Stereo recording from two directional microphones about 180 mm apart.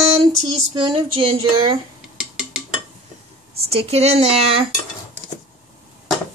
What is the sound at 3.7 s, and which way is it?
Speech, 35° right (ahead or behind).